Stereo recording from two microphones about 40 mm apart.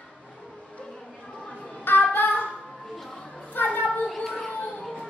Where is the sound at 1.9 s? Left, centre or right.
Left.